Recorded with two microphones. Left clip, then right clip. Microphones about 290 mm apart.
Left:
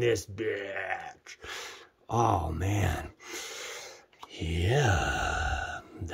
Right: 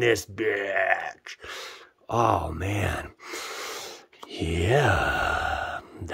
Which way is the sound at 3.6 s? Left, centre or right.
Right.